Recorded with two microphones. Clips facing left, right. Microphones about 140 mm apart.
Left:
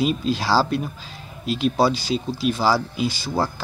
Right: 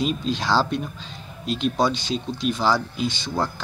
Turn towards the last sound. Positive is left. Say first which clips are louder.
# left 2 dB
turn(degrees=5)  # may be behind; listen again after turning